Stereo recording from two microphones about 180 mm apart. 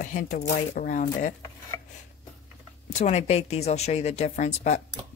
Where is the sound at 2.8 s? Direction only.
35° left (ahead or behind).